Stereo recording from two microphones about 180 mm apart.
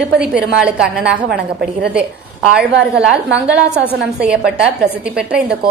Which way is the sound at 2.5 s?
5° right (ahead or behind).